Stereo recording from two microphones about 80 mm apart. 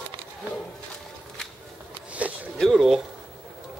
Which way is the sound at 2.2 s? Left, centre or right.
Centre.